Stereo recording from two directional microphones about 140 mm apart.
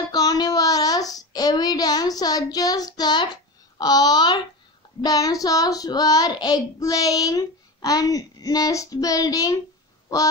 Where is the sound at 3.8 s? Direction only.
30° left (ahead or behind).